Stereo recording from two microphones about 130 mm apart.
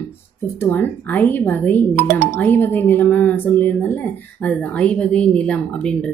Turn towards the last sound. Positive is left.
turn(degrees=10)  # may be behind; listen again after turning